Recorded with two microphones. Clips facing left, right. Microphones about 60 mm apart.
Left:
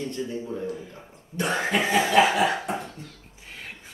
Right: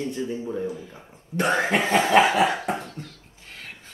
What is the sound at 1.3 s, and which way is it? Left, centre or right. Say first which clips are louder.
Cough: right 3 dB; right.